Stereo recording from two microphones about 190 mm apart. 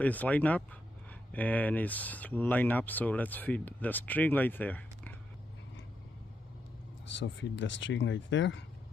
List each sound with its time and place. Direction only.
0.0 s speech: 10° left (ahead or behind)
7.2 s speech: 75° left (ahead or behind)